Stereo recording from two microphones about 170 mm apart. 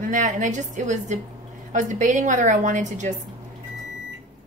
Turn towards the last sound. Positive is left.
turn(degrees=-45)  # may be behind; listen again after turning